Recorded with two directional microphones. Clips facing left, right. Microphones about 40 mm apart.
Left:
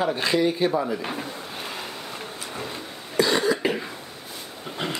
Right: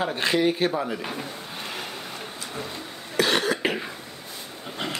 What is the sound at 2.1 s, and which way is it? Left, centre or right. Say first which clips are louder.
Vehicle: left 1 dB; centre.